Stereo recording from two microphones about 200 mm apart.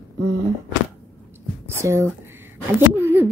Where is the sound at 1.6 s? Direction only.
15° right (ahead or behind).